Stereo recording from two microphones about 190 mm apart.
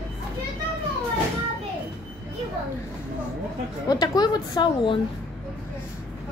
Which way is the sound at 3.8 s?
20° left (ahead or behind).